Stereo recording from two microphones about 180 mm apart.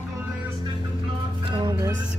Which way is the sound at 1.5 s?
25° right (ahead or behind).